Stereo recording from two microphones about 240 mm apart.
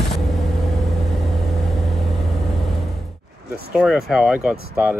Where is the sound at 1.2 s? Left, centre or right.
Centre.